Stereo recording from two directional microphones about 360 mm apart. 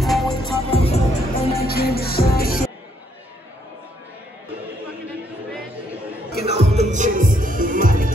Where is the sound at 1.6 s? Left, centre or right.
Left.